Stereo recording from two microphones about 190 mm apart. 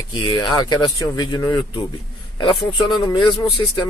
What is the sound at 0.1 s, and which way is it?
Speech, 25° left (ahead or behind).